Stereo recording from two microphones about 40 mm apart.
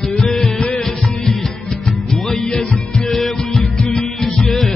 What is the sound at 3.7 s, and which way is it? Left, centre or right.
Music, centre.